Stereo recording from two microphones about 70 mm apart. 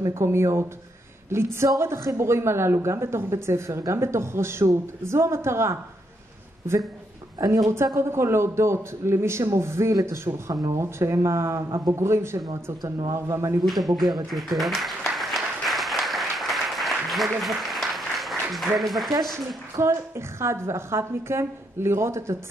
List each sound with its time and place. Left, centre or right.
0.0 s a woman's voice: right
7.3 s a woman's voice: right
10.5 s a woman's voice: right
14.3 s applause: centre
19.3 s a woman's voice: right